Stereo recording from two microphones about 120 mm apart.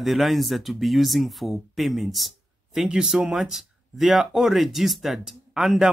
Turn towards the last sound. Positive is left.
turn(degrees=-5)  # may be behind; listen again after turning